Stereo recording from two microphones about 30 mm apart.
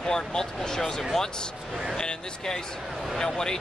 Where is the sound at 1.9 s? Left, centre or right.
Left.